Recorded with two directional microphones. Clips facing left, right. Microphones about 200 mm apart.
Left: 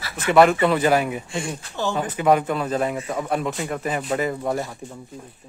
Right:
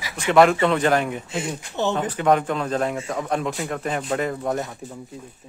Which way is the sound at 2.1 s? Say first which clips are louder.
Left 2 dB; 5° left (ahead or behind).